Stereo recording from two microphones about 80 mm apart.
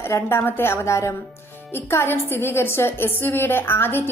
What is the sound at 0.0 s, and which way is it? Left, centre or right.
A woman's voice, left.